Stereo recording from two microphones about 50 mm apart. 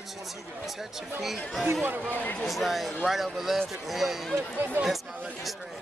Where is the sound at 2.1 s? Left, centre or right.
Left.